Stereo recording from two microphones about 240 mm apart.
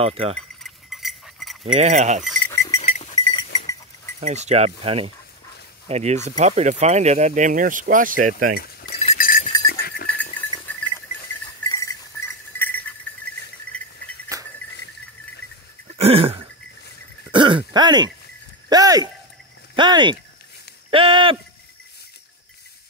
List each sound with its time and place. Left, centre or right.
0.0 s speech: right
0.7 s chink: centre
1.6 s speech: right
2.5 s goat: centre
2.8 s goat: left
4.2 s speech: right
8.5 s a sound: left
9.0 s goat: left
10.2 s goat: centre
10.7 s pig: centre
11.7 s a sound: centre
16.0 s throat clearing: right
18.7 s speech: centre